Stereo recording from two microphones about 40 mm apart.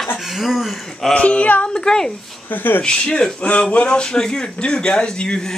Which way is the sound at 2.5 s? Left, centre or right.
Left.